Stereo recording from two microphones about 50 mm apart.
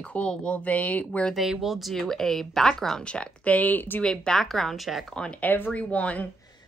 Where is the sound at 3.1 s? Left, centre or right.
Left.